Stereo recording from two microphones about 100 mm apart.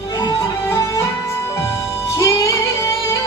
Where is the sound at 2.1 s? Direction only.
30° left (ahead or behind).